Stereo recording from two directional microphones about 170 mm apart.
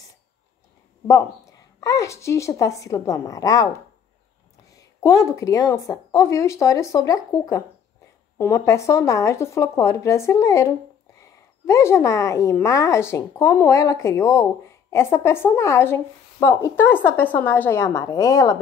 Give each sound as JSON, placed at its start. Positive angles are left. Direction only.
{"t": 1.6, "sound": "a woman's voice", "side_deg": 20}
{"t": 4.7, "sound": "speech", "side_deg": 20}